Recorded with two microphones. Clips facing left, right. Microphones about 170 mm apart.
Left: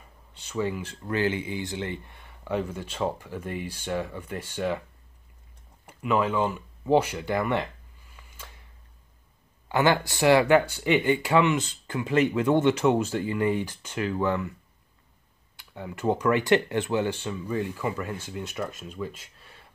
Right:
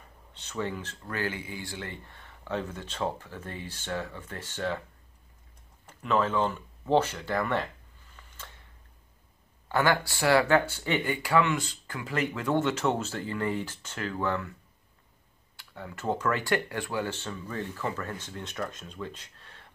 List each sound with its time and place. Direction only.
0.3 s speech: 10° left (ahead or behind)
5.9 s speech: 10° left (ahead or behind)
9.7 s speech: 20° left (ahead or behind)
15.5 s speech: 20° left (ahead or behind)